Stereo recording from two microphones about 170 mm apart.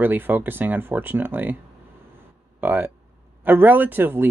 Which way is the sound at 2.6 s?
10° right (ahead or behind).